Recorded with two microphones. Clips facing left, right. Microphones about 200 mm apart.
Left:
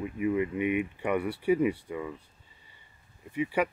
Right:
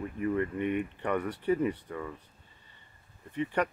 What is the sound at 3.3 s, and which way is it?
Speech, 10° left (ahead or behind).